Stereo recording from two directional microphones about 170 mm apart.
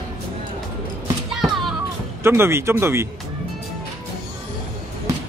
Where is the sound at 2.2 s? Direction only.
15° right (ahead or behind).